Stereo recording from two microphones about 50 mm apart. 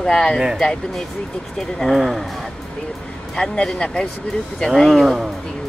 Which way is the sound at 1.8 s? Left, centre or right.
Centre.